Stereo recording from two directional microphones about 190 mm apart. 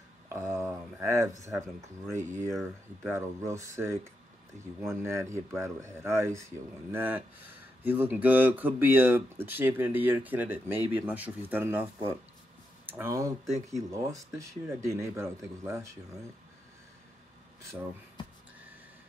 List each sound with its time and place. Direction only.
0.3 s speech: 15° right (ahead or behind)
12.9 s speech: 15° right (ahead or behind)